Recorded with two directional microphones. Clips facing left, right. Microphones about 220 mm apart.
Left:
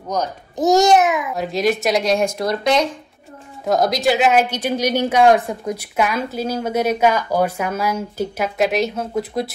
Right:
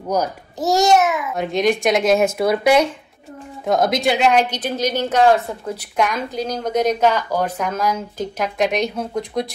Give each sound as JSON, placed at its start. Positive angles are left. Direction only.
{"t": 0.6, "sound": "a child's voice", "side_deg": 20}
{"t": 1.3, "sound": "speech", "side_deg": 0}